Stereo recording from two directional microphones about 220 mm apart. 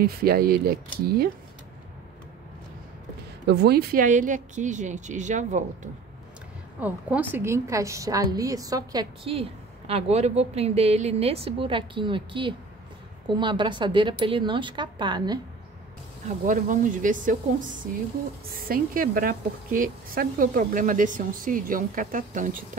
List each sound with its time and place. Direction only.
0.0 s speech: 45° right (ahead or behind)
3.4 s speech: 45° right (ahead or behind)
6.8 s a woman's voice: 5° right (ahead or behind)
16.4 s speech: 35° right (ahead or behind)